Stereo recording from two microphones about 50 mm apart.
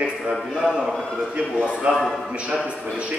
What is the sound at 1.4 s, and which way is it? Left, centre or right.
Speech, right.